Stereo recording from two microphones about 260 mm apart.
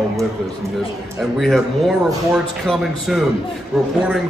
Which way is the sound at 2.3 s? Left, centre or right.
Centre.